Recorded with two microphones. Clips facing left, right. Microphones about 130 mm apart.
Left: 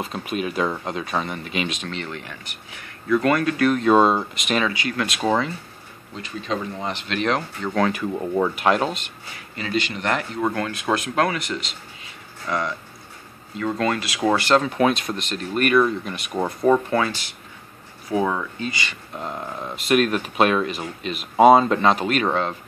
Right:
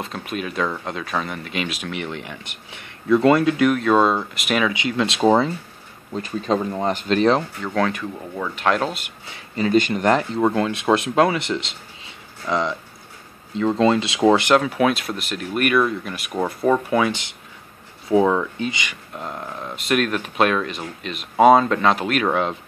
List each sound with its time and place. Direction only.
0.0 s speech: centre (ahead or behind); by 3.7 s 20° right (ahead or behind)
3.7 s speech: centre (ahead or behind)
4.7 s speech: 20° right (ahead or behind)
6.1 s speech: 45° right (ahead or behind)
7.6 s speech: centre (ahead or behind)
8.1 s speech: 20° left (ahead or behind)
8.5 s speech: 5° left (ahead or behind)
9.6 s speech: 45° right (ahead or behind)
10.4 s speech: 20° right (ahead or behind)
14.6 s speech: 5° right (ahead or behind)
16.8 s speech: 15° right (ahead or behind)
19.1 s speech: centre (ahead or behind)
22.3 s speech: 15° right (ahead or behind)